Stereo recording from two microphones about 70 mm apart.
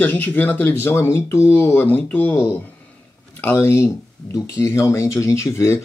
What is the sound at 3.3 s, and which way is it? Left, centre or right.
Speech, left.